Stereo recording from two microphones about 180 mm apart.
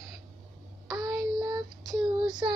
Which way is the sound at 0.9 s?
20° right (ahead or behind).